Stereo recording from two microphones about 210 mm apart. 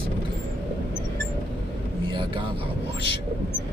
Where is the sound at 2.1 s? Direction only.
25° right (ahead or behind).